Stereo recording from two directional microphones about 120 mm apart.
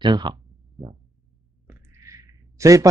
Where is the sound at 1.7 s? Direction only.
25° right (ahead or behind).